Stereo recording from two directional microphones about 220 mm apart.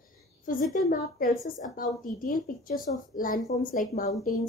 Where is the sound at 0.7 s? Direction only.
40° left (ahead or behind).